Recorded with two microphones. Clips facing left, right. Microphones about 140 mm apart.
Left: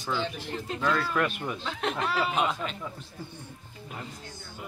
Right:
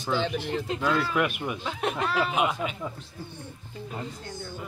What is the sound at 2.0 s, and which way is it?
Speech, 5° left (ahead or behind).